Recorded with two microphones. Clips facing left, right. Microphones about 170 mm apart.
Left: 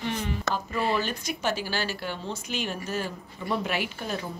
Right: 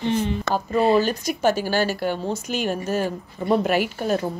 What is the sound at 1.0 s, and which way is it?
A woman's voice, 40° right (ahead or behind).